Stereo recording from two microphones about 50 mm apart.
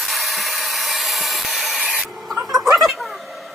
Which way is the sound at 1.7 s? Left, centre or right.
Right.